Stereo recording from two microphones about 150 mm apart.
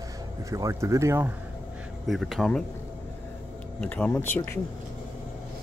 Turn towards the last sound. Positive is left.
turn(degrees=15)  # may be behind; listen again after turning